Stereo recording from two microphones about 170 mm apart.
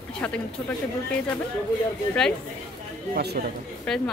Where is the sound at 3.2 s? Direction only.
70° right (ahead or behind).